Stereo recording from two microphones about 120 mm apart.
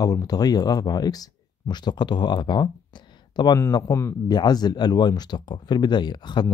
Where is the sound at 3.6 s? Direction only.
25° left (ahead or behind).